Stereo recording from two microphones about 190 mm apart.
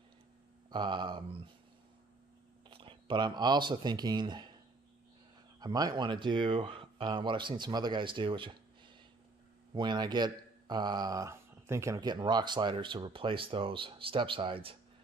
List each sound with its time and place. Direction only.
0.7 s speech: 25° right (ahead or behind)
2.7 s speech: 25° right (ahead or behind)
5.6 s speech: 20° right (ahead or behind)